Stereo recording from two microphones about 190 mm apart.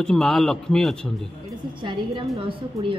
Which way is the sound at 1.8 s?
25° right (ahead or behind).